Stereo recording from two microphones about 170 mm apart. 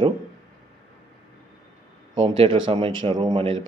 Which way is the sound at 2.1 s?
30° right (ahead or behind).